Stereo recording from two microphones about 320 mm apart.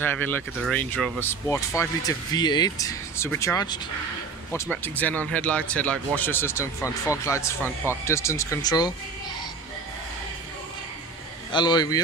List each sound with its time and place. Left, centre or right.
0.0 s speech: centre
7.6 s speech: centre
8.0 s speech: centre
11.5 s speech: centre